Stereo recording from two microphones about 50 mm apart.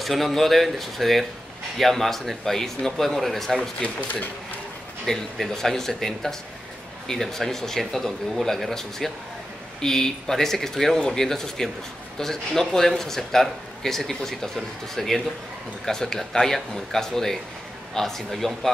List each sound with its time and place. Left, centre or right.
0.0 s speech: centre
5.0 s a man's voice: centre